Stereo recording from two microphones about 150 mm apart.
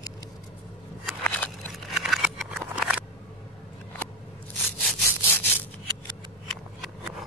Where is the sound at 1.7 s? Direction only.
Centre (ahead or behind).